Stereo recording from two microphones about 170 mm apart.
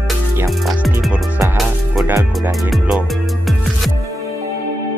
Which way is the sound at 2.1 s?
20° right (ahead or behind).